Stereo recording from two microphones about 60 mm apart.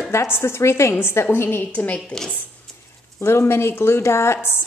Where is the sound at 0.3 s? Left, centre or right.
Left.